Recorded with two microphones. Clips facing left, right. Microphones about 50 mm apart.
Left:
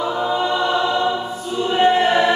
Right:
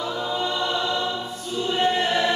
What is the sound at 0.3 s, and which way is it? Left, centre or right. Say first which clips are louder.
Choir: left 6 dB; centre.